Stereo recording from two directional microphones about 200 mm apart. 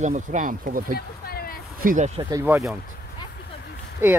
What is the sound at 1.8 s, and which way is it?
Speech, 45° right (ahead or behind).